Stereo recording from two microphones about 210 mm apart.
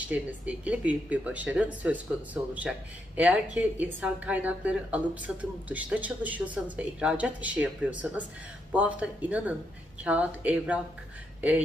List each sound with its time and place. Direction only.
0.1 s a woman's voice: 5° right (ahead or behind)